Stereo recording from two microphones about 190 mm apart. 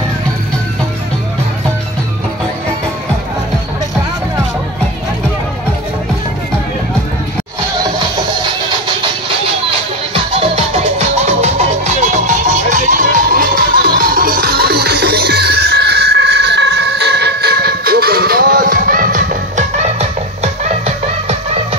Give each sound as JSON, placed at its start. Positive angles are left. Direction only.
{"t": 10.1, "sound": "music", "side_deg": -30}